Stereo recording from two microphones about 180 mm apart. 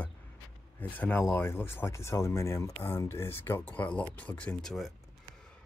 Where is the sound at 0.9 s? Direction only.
10° left (ahead or behind).